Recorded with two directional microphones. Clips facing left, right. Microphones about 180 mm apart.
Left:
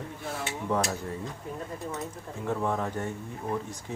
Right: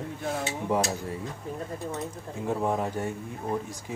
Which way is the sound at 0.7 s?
10° right (ahead or behind).